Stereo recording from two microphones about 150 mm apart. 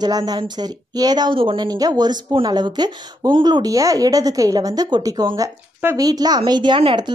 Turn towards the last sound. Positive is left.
turn(degrees=-35)  # may be behind; listen again after turning